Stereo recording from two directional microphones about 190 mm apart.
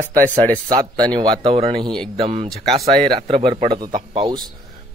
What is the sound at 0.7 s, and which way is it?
A man's voice, 20° right (ahead or behind).